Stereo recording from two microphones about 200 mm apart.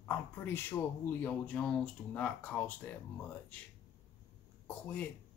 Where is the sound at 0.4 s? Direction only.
10° left (ahead or behind).